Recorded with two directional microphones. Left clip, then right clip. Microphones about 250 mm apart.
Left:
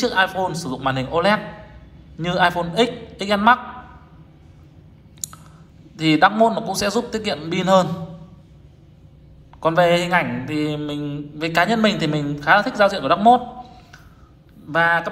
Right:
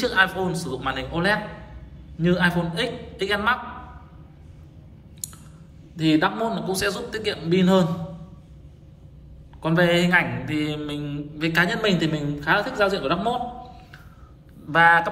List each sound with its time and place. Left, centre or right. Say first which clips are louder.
0.0 s a man's voice: left 2 dB; centre
5.2 s clicking: left 5 dB; left
5.9 s speech: left 6 dB; left
9.6 s speech: left 4 dB; centre
14.7 s speech: right 2 dB; centre